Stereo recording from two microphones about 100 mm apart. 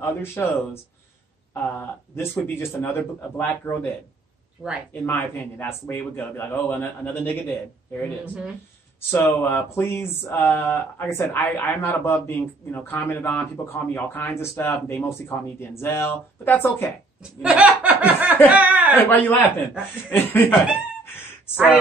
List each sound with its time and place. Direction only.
0.0 s speech: 25° left (ahead or behind)
1.5 s speech: 25° left (ahead or behind)
4.6 s speech: 5° right (ahead or behind)
5.0 s speech: 20° left (ahead or behind)
9.1 s speech: 20° left (ahead or behind)
17.2 s laughter: 15° right (ahead or behind)
18.5 s chuckle: 15° right (ahead or behind)
18.9 s a man's voice: 20° left (ahead or behind)